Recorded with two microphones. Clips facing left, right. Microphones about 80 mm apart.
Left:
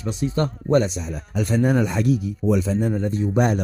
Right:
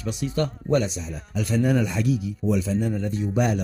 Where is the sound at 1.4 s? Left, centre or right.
Left.